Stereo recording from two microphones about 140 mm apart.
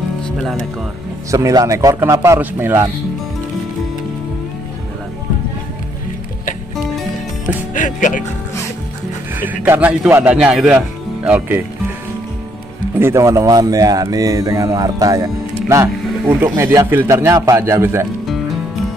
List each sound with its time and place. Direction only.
1.3 s speech: 25° right (ahead or behind)
7.7 s speech: 65° left (ahead or behind)
9.4 s speech: 10° right (ahead or behind)
13.0 s speech: 20° right (ahead or behind)